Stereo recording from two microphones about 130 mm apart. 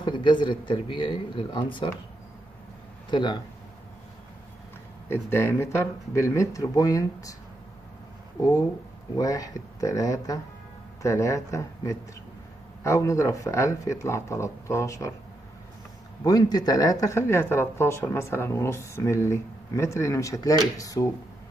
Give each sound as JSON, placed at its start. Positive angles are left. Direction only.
{"t": 0.0, "sound": "speech", "side_deg": 35}
{"t": 3.1, "sound": "speech", "side_deg": 35}
{"t": 5.0, "sound": "speech", "side_deg": 20}
{"t": 9.1, "sound": "speech", "side_deg": 25}
{"t": 16.3, "sound": "speech", "side_deg": 30}